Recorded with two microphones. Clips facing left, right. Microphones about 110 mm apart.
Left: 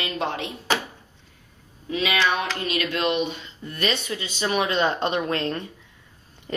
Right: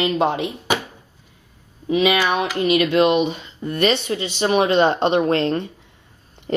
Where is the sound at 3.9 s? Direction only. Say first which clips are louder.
Right 7 dB; 25° right (ahead or behind).